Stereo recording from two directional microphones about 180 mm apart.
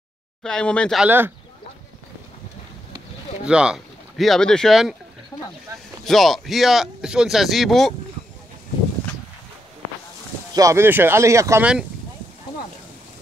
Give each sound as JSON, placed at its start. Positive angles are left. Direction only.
{"t": 0.4, "sound": "speech", "side_deg": 5}
{"t": 1.0, "sound": "speech", "side_deg": -10}
{"t": 3.4, "sound": "speech", "side_deg": -5}
{"t": 5.3, "sound": "speech", "side_deg": 25}
{"t": 5.7, "sound": "a sound", "side_deg": -20}
{"t": 6.0, "sound": "speech", "side_deg": 0}
{"t": 10.5, "sound": "speech", "side_deg": -15}